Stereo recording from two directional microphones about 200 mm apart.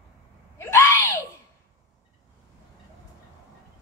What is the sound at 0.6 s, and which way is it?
Screaming, 15° left (ahead or behind).